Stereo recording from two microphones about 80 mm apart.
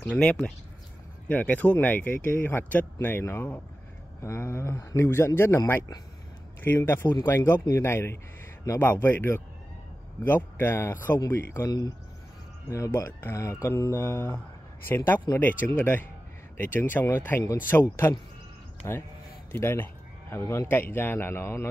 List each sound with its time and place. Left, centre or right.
0.0 s speech: centre; by 5.6 s left
6.8 s speech: left
18.8 s speech: left